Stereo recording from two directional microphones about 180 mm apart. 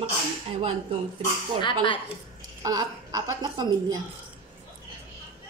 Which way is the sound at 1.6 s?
25° left (ahead or behind).